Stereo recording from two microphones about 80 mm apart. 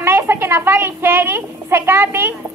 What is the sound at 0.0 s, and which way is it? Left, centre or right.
A woman's voice, right.